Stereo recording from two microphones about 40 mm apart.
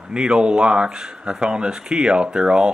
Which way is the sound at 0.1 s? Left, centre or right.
Right.